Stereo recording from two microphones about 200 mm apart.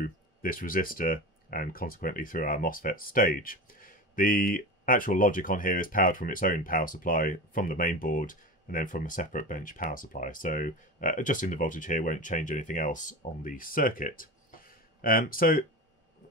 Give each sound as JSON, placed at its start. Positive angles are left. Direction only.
{"t": 0.0, "sound": "speech", "side_deg": 45}